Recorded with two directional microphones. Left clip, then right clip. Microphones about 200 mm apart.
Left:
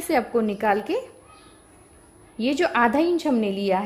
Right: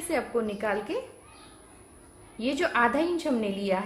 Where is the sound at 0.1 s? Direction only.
45° left (ahead or behind).